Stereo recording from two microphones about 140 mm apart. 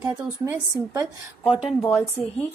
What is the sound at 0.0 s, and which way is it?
A woman's voice, 20° right (ahead or behind).